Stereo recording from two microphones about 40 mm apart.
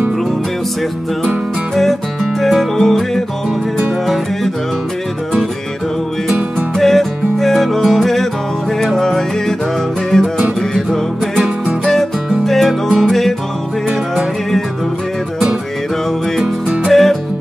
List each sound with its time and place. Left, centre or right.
2.4 s music: centre
6.8 s music: centre
16.9 s music: centre